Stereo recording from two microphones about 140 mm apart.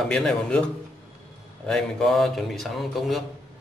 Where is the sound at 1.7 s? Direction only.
5° left (ahead or behind).